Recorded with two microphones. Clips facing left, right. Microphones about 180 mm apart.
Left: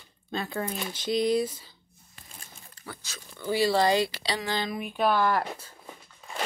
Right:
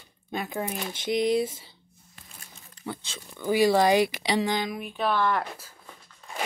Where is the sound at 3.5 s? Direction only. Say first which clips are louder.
Right 3 dB; 15° right (ahead or behind).